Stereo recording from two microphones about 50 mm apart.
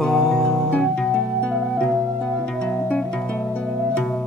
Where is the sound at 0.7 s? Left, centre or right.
Centre.